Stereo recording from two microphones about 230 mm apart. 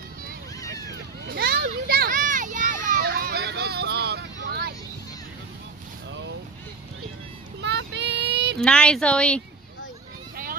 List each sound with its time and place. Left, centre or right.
0.9 s a sound: right
7.6 s child singing: right
8.5 s speech: centre
10.3 s vehicle: right